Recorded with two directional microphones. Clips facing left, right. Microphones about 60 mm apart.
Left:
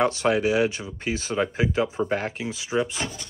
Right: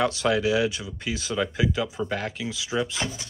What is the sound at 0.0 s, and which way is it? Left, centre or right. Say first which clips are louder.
Speech: left 2 dB; left.